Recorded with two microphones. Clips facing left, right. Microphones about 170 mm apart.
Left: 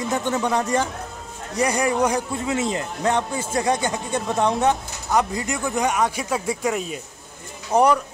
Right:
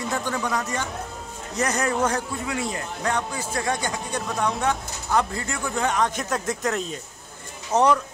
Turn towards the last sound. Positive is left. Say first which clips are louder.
# left 2 dB
turn(degrees=10)  # may be behind; listen again after turning